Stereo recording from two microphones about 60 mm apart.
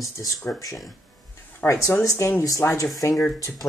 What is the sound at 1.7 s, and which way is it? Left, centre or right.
Speech, left.